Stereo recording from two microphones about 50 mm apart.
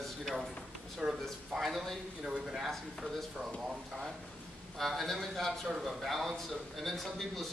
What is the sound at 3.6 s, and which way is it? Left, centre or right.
Speech, centre.